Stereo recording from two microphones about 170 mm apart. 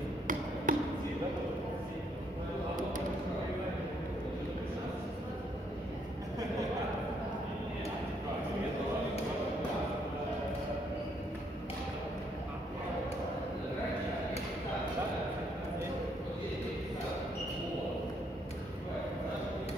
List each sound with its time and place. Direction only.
0.7 s basketball bounce: 55° right (ahead or behind)